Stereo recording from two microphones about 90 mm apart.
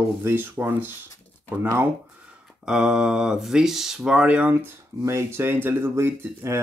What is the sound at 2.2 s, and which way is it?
Speech, 10° right (ahead or behind).